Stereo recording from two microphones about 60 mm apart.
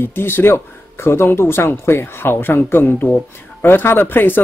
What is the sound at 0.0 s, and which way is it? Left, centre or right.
A woman's voice, left.